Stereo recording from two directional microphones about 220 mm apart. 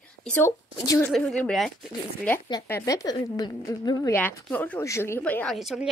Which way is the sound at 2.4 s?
15° left (ahead or behind).